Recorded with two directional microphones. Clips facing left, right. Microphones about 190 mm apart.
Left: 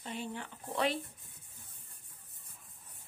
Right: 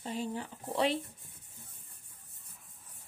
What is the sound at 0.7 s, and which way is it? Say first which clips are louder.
Speech: right 3 dB; 30° right (ahead or behind).